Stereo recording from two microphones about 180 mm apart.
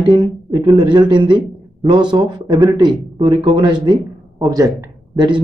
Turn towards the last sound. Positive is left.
turn(degrees=-20)  # may be behind; listen again after turning